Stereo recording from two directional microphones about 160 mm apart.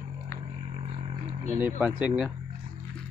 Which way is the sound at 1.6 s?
10° right (ahead or behind).